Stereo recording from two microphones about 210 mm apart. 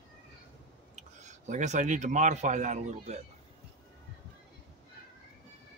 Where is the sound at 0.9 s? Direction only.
35° right (ahead or behind).